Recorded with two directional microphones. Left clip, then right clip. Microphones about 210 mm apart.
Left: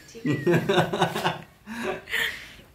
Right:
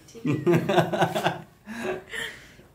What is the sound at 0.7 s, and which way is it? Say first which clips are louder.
Speech: even; 45° right (ahead or behind).